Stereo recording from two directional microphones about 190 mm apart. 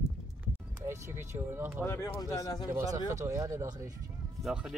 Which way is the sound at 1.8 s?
15° left (ahead or behind).